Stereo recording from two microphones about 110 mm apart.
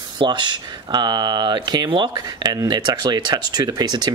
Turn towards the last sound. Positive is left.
turn(degrees=-40)  # may be behind; listen again after turning